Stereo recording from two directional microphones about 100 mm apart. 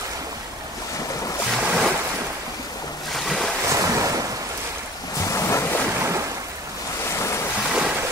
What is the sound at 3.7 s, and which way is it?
Waves, 35° right (ahead or behind).